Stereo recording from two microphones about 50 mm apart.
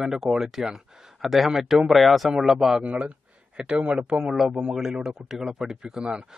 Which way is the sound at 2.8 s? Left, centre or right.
Right.